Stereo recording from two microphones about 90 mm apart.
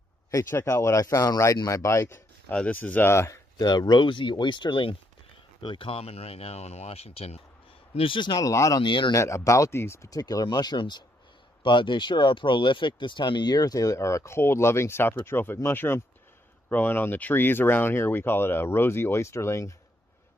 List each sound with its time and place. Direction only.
0.3 s speech: 35° left (ahead or behind)
2.5 s speech: 15° left (ahead or behind)
3.5 s speech: 55° left (ahead or behind); by 7.2 s 90° left
8.0 s speech: 65° left (ahead or behind)
8.5 s speech: 40° left (ahead or behind)
8.8 s speech: 60° left (ahead or behind)
9.1 s speech: 35° left (ahead or behind)
10.0 s speech: 45° left (ahead or behind)